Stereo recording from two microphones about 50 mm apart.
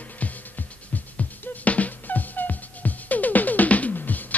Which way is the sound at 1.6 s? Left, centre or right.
Left.